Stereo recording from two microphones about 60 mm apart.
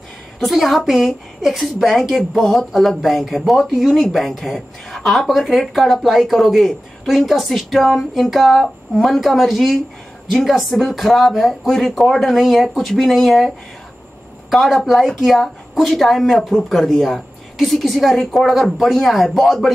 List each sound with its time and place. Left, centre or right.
0.4 s a woman's voice: centre
14.5 s a woman's voice: centre